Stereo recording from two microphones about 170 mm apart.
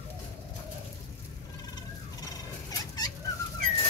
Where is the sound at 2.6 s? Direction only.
20° left (ahead or behind).